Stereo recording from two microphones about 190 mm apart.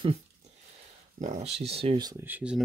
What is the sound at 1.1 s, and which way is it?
Speech, 40° right (ahead or behind).